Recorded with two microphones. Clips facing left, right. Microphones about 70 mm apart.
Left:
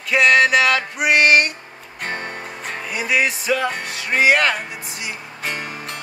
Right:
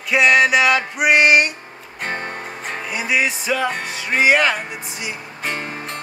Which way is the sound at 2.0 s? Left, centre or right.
Right.